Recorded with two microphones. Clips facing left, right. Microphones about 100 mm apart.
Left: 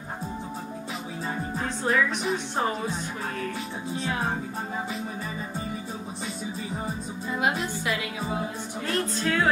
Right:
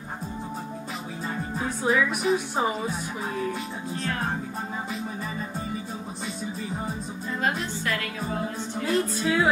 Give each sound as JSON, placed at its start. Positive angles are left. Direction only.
{"t": 1.6, "sound": "speech", "side_deg": -10}
{"t": 3.9, "sound": "music", "side_deg": 5}
{"t": 7.3, "sound": "a woman's voice", "side_deg": 10}
{"t": 8.8, "sound": "music", "side_deg": -5}